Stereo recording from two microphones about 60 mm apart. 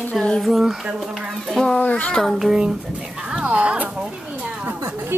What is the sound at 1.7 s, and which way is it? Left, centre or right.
Speech, left.